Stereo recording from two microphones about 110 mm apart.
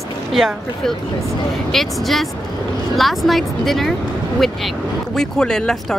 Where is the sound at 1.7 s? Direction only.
Centre (ahead or behind).